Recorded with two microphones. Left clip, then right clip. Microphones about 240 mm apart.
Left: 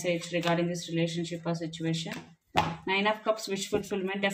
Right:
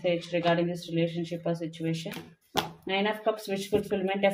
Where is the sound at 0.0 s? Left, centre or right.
Left.